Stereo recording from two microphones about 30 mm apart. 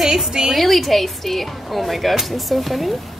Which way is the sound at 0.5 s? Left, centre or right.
Centre.